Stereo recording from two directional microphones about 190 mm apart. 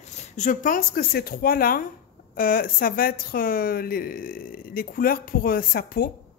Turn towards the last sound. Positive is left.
turn(degrees=50)  # may be behind; listen again after turning